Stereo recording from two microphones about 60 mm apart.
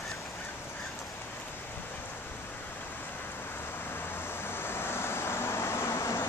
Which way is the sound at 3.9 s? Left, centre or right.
Left.